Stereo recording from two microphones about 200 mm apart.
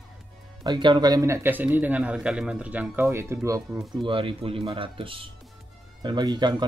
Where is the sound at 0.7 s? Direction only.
20° right (ahead or behind).